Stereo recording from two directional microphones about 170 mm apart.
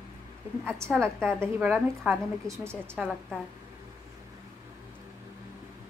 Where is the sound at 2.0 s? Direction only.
15° right (ahead or behind).